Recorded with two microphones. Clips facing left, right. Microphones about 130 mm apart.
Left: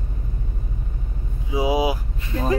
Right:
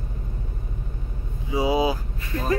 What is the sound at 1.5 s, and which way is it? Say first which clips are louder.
Speech: left 1 dB; 15° left (ahead or behind).